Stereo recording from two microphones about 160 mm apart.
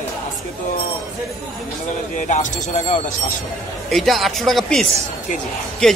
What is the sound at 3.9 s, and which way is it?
Speech, centre (ahead or behind).